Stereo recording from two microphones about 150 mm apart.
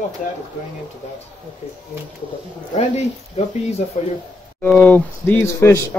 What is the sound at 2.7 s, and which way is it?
Speech, 45° left (ahead or behind).